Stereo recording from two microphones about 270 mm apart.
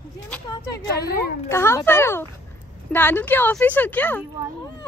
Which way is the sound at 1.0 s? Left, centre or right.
Left.